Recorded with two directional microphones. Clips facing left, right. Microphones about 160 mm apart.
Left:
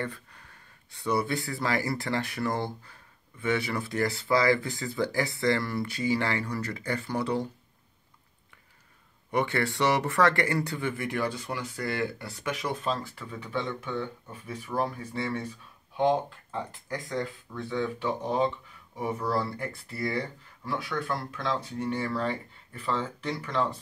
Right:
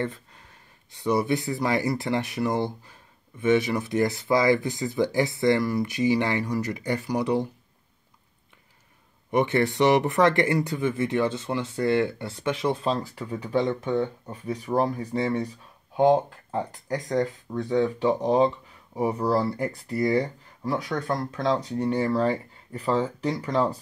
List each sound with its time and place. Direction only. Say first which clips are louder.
0.0 s speech: right 5 dB; 20° right (ahead or behind)
9.3 s speech: right 5 dB; 20° right (ahead or behind); by 15.4 s 40° right (ahead or behind)
16.5 s speech: right 6 dB; 40° right (ahead or behind)